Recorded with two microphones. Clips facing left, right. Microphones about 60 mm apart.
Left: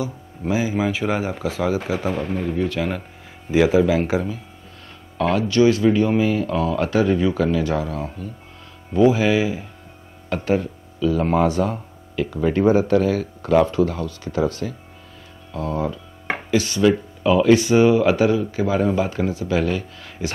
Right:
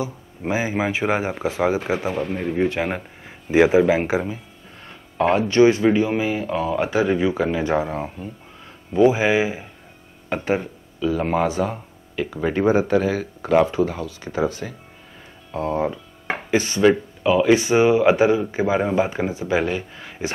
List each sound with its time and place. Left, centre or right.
0.0 s a man's voice: right
2.3 s a man's voice: right
5.1 s music: right
5.5 s a man's voice: right
15.5 s a man's voice: right
17.2 s speech: centre
17.6 s a man's voice: right